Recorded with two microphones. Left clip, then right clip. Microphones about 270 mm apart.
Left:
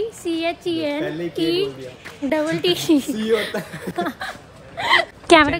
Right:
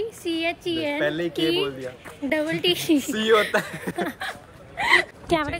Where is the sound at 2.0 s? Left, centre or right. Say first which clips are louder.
Left 4 dB; centre.